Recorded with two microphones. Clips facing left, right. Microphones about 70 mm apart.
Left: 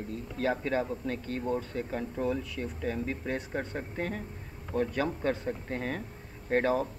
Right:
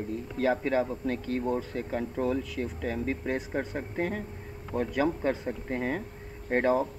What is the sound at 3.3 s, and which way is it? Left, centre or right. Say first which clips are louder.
Speech: right 3 dB; centre.